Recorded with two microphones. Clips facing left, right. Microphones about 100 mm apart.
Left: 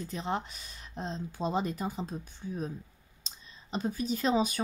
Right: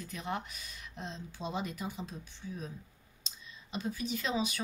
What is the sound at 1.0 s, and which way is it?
Speech, 40° left (ahead or behind).